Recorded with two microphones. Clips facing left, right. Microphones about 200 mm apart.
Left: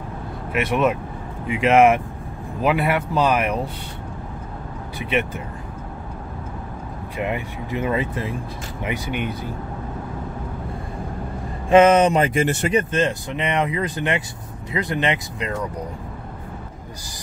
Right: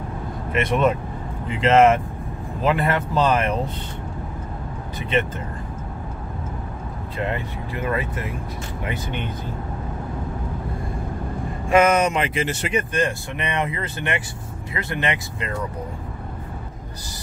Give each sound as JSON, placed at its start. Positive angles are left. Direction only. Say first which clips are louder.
{"t": 0.5, "sound": "speech", "louder": "even", "side_deg": 5}
{"t": 7.2, "sound": "speech", "louder": "left 1 dB", "side_deg": 15}
{"t": 8.8, "sound": "speech", "louder": "left 4 dB", "side_deg": 10}
{"t": 11.7, "sound": "speech", "louder": "left 4 dB", "side_deg": 30}
{"t": 12.2, "sound": "speech", "louder": "left 5 dB", "side_deg": 50}
{"t": 12.7, "sound": "speech", "louder": "even", "side_deg": 20}